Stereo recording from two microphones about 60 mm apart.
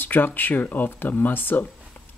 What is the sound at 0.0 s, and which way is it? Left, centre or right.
Speech, left.